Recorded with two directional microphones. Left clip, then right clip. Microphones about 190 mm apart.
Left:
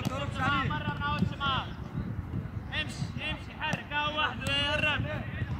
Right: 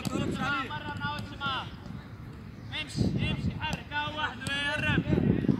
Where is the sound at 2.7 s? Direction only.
15° left (ahead or behind); by 5.0 s 30° left (ahead or behind).